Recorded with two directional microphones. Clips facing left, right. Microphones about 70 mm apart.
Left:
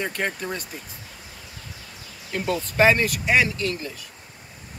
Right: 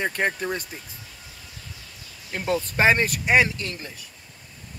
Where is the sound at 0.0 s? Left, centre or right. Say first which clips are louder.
Right 2 dB; right.